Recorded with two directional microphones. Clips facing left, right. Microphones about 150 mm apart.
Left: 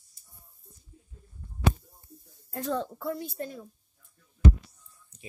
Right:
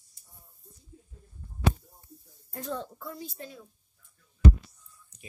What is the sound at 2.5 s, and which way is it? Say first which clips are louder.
A woman's voice: left 5 dB; 85° left.